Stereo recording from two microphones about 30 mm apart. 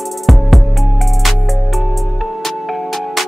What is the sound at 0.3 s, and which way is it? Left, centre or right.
Music, centre.